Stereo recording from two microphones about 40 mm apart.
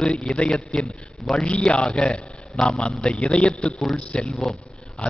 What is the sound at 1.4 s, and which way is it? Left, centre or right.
A man's voice, left.